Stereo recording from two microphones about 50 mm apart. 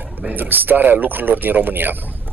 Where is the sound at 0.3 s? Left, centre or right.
Right.